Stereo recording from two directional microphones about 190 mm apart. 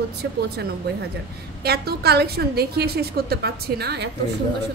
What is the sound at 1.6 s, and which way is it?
A woman's voice, 55° right (ahead or behind).